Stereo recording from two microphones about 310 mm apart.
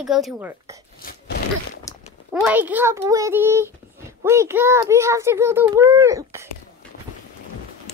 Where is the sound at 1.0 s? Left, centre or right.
Left.